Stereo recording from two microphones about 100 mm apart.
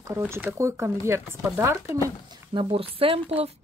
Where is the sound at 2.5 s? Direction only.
60° right (ahead or behind); by 3.5 s 80° right.